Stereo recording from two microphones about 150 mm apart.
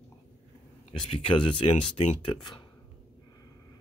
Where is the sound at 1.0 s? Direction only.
35° left (ahead or behind).